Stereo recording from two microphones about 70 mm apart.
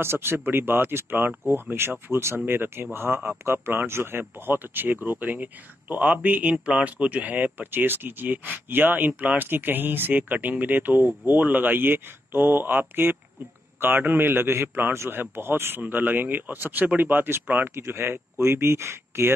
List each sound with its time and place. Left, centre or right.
0.0 s a man's voice: right
17.7 s a man's voice: right